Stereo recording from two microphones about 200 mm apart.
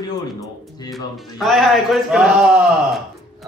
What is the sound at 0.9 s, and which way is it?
Speech, centre (ahead or behind).